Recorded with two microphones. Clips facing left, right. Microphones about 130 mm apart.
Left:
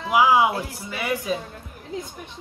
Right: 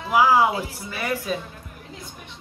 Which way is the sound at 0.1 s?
15° left (ahead or behind).